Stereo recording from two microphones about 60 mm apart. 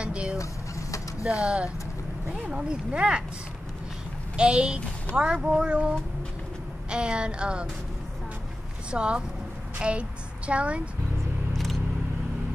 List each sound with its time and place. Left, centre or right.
0.0 s vehicle: centre
0.4 s vehicle: left
1.4 s speech: centre
4.4 s speech: centre
8.9 s speech: centre